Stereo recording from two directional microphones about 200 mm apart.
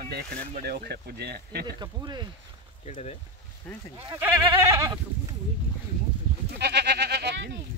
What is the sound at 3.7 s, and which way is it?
Speech, 5° left (ahead or behind).